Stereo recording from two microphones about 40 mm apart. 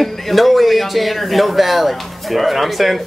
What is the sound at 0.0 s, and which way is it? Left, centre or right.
Speech, centre.